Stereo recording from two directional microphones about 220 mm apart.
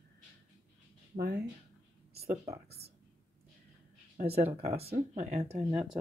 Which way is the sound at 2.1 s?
30° right (ahead or behind).